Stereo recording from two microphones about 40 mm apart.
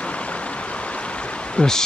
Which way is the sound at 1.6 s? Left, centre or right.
Left.